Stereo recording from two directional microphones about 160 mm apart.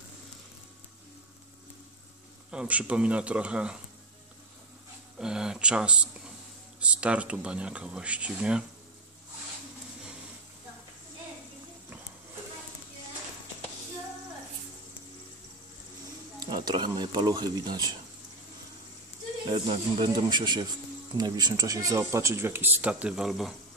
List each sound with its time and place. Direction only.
2.5 s speech: 5° right (ahead or behind)
5.2 s speech: 5° right (ahead or behind)
16.3 s speech: 25° right (ahead or behind)
19.5 s speech: 25° right (ahead or behind); by 23.5 s centre (ahead or behind)